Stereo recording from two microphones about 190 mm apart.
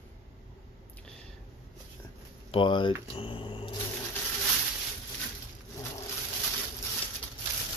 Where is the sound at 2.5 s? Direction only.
25° left (ahead or behind).